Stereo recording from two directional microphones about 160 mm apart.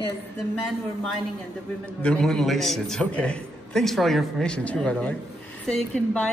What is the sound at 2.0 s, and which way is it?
A man's voice, 5° left (ahead or behind).